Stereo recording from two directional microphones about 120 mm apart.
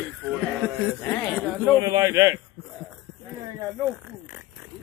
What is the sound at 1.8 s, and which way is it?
Speech, 30° right (ahead or behind).